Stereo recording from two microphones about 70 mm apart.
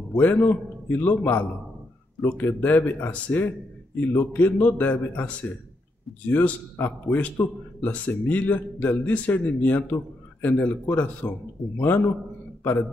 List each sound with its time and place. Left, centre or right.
0.1 s a man's voice: left
2.2 s speech: centre
2.6 s a man's voice: left